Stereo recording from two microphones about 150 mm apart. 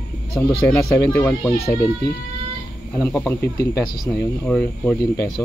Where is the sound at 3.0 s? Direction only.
10° left (ahead or behind).